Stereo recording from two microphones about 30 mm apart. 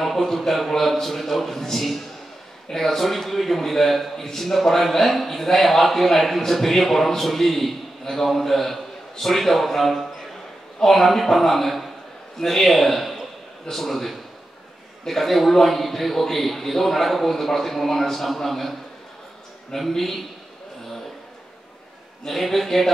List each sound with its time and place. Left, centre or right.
0.2 s a man's voice: centre
19.7 s a man's voice: centre
22.3 s speech: centre